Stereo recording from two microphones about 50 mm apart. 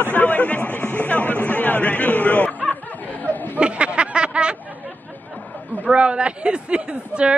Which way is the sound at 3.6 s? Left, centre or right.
Right.